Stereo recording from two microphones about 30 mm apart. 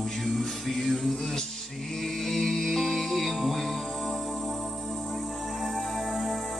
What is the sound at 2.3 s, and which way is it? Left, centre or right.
Music, centre.